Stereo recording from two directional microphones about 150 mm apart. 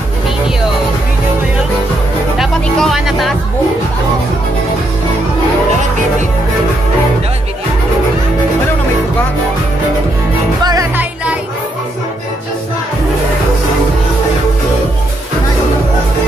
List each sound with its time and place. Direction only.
2.3 s music: centre (ahead or behind)
10.6 s music: 25° right (ahead or behind)